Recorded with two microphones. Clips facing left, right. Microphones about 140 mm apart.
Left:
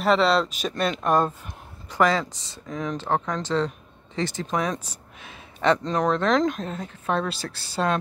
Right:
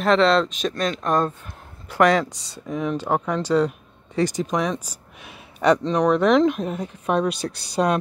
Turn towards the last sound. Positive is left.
turn(degrees=-15)  # may be behind; listen again after turning